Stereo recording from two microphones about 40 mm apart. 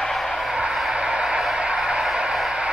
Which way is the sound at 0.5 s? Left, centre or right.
Right.